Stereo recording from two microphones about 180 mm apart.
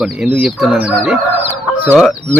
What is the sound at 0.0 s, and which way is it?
A man's voice, 5° right (ahead or behind).